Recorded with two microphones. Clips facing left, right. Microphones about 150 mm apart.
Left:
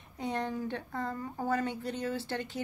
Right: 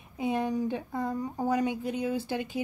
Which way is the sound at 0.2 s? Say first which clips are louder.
Right 5 dB; 10° right (ahead or behind).